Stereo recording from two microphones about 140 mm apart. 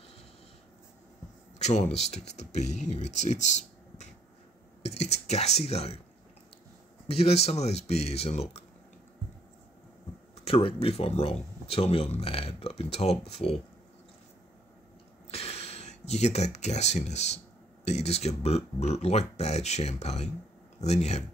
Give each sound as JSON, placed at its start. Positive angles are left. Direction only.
{"t": 1.6, "sound": "speech", "side_deg": 50}
{"t": 4.8, "sound": "speech", "side_deg": 50}
{"t": 7.1, "sound": "speech", "side_deg": 45}
{"t": 10.3, "sound": "speech", "side_deg": 45}
{"t": 15.3, "sound": "speech", "side_deg": 45}